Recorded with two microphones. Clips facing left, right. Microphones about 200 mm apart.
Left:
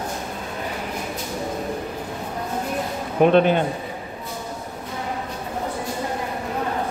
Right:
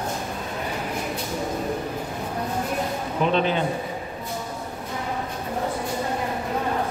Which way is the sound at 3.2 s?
55° left (ahead or behind).